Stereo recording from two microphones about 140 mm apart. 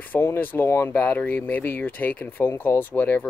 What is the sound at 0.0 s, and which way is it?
Speech, 15° left (ahead or behind).